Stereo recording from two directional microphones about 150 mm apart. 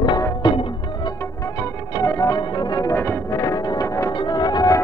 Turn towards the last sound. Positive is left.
turn(degrees=25)  # may be behind; listen again after turning